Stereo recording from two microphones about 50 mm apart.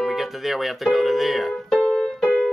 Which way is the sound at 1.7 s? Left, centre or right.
Centre.